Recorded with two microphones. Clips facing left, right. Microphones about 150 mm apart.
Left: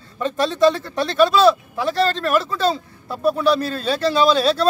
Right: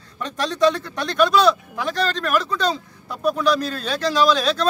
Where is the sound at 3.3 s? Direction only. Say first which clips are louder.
Left 2 dB; 5° left (ahead or behind).